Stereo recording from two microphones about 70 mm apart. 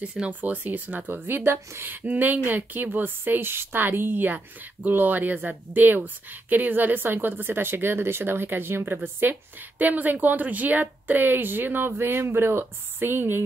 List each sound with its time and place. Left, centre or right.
0.0 s speech: centre
0.3 s speech: right